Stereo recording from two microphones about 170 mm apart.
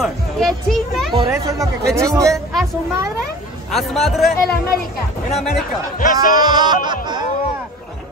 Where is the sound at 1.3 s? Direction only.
20° right (ahead or behind).